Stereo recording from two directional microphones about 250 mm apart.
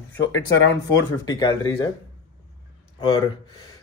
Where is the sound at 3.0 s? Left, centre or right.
Centre.